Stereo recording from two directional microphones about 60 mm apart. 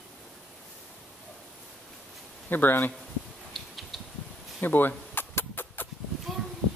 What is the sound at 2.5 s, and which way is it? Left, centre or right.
Speech, left.